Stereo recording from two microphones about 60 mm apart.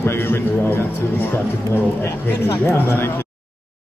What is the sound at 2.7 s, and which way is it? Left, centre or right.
Speech, left.